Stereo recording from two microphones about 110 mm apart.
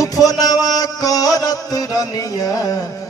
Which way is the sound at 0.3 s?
35° left (ahead or behind).